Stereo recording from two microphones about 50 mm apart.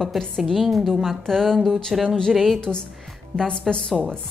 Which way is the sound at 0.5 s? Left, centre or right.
Centre.